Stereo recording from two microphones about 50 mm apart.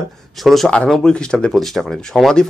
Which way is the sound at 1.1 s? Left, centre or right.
Centre.